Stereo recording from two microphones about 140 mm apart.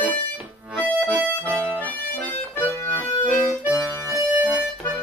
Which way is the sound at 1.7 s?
10° left (ahead or behind).